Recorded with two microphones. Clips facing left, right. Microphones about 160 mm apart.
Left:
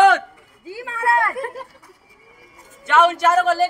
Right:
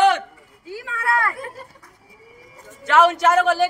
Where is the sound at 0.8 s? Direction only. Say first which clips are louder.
Left 3 dB; 30° left (ahead or behind).